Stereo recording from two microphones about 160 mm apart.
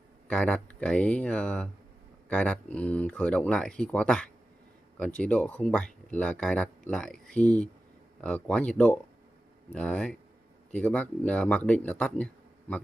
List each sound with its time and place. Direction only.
0.3 s speech: 5° left (ahead or behind)